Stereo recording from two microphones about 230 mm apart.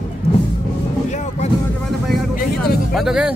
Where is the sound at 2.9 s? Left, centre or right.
Centre.